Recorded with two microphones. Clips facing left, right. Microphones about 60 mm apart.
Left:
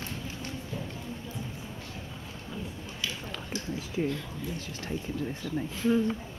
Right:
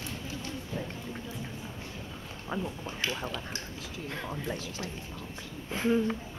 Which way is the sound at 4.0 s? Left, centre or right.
Left.